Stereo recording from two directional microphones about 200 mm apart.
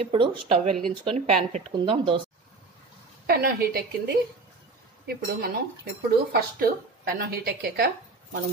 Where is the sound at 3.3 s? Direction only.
50° right (ahead or behind).